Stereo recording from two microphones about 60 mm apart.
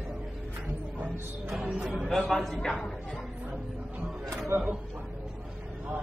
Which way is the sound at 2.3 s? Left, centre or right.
Centre.